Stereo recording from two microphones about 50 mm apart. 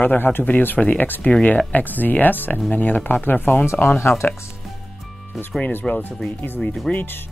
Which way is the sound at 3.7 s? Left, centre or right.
Left.